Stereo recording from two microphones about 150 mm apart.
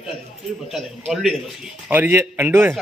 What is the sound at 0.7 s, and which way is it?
Speech, centre (ahead or behind).